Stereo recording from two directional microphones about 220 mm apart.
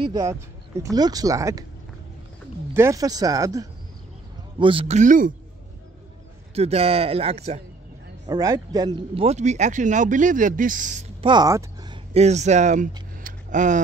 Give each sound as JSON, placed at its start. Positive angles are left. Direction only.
{"t": 0.0, "sound": "speech", "side_deg": -15}
{"t": 2.7, "sound": "speech", "side_deg": -15}
{"t": 6.5, "sound": "speech", "side_deg": -30}
{"t": 8.3, "sound": "speech", "side_deg": -15}
{"t": 11.2, "sound": "speech", "side_deg": -15}
{"t": 12.1, "sound": "speech", "side_deg": -30}